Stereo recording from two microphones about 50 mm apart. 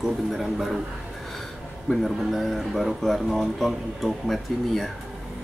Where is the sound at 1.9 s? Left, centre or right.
Centre.